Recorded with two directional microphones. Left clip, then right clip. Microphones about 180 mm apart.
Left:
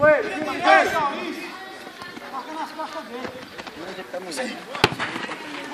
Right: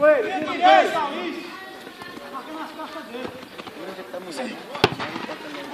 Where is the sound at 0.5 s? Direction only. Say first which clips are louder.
Right 2 dB; 50° left (ahead or behind).